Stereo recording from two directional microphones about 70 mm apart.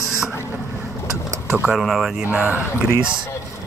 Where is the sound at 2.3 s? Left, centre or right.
Right.